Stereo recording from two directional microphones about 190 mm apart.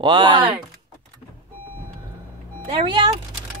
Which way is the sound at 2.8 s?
25° right (ahead or behind).